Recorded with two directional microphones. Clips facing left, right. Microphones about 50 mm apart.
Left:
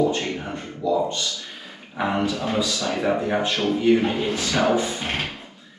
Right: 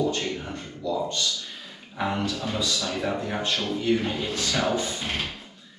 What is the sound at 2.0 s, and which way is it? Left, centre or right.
Speech, left.